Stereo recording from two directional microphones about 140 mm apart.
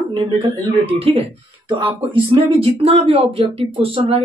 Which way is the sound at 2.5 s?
45° right (ahead or behind).